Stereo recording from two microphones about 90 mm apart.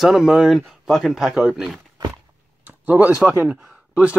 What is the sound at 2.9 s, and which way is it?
Speech, 15° right (ahead or behind).